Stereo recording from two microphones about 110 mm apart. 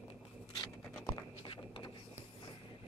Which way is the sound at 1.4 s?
55° left (ahead or behind).